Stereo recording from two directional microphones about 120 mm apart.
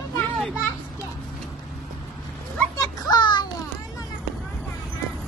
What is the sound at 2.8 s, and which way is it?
Children playing, 30° left (ahead or behind).